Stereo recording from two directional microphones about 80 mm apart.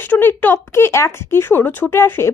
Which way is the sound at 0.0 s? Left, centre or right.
Left.